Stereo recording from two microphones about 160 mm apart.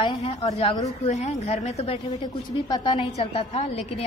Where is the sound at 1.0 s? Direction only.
45° left (ahead or behind).